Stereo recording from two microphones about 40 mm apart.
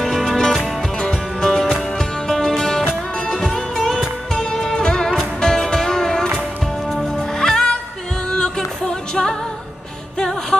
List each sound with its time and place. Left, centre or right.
0.0 s music: centre
0.9 s music: centre